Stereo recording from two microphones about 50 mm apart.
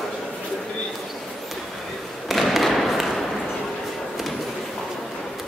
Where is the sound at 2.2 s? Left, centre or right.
Centre.